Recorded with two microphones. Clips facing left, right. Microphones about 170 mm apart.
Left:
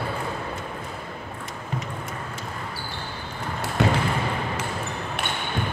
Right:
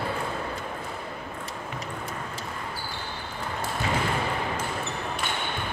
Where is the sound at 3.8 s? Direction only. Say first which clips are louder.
Left 8 dB; 70° left (ahead or behind).